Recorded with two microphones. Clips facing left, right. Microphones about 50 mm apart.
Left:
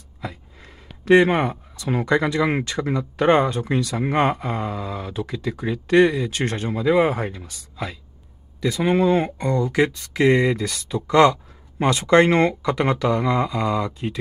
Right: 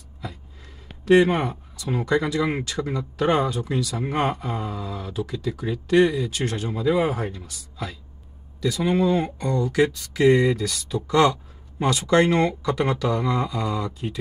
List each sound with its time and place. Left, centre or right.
0.2 s speech: left